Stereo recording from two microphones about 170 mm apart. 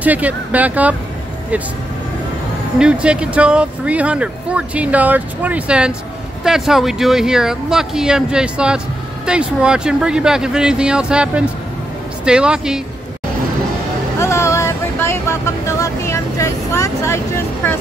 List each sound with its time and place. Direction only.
0.0 s speech: 10° right (ahead or behind)
2.8 s speech: 5° right (ahead or behind)
14.2 s vehicle: 15° left (ahead or behind)